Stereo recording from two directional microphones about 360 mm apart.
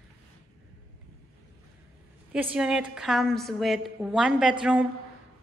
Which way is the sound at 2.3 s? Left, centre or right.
Centre.